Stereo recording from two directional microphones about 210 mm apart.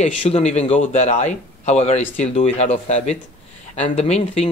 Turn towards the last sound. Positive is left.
turn(degrees=30)  # may be behind; listen again after turning